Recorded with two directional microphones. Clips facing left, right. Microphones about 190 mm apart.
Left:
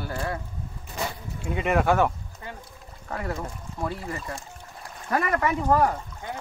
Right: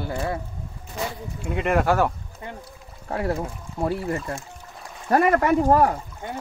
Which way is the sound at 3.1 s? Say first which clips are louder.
Right 6 dB; 30° right (ahead or behind).